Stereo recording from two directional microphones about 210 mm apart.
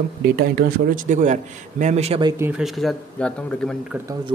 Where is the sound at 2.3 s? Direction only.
10° right (ahead or behind).